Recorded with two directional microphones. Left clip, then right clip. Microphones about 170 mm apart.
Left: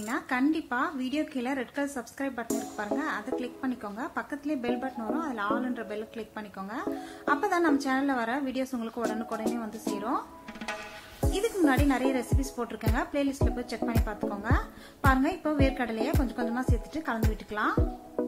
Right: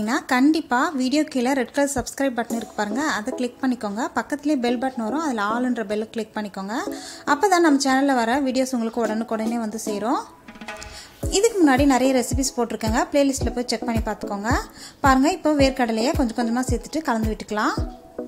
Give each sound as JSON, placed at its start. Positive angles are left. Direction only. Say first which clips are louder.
{"t": 0.0, "sound": "speech", "louder": "right 9 dB", "side_deg": -40}
{"t": 11.3, "sound": "speech", "louder": "right 9 dB", "side_deg": -35}